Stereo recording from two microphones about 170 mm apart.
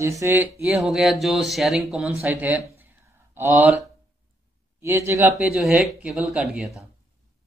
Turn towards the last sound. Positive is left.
turn(degrees=0)  # may be behind; listen again after turning